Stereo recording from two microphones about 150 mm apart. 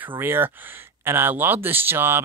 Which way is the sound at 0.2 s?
15° right (ahead or behind).